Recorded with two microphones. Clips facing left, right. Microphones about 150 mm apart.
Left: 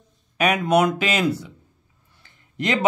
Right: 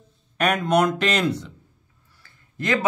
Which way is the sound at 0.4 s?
5° left (ahead or behind).